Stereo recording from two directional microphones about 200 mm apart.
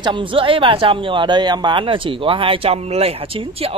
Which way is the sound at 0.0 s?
25° right (ahead or behind).